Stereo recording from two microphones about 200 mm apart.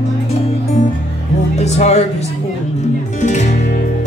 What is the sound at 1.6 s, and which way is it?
Music, 35° left (ahead or behind).